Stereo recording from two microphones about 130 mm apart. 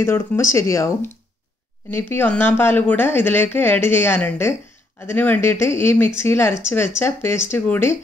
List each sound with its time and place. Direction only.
0.0 s speech: 20° left (ahead or behind)